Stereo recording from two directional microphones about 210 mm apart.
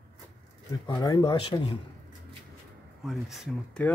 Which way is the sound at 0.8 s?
20° left (ahead or behind).